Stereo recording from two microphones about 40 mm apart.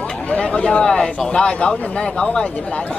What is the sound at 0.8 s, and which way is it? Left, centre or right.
Speech, centre.